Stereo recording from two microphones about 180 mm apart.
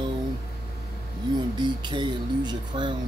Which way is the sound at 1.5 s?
25° right (ahead or behind).